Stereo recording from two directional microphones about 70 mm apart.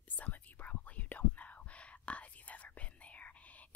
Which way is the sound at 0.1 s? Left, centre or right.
Left.